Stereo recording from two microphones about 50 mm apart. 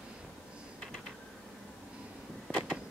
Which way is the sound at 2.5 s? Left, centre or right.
Centre.